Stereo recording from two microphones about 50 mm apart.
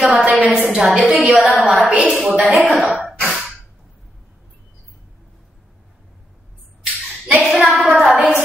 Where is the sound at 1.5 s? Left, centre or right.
Centre.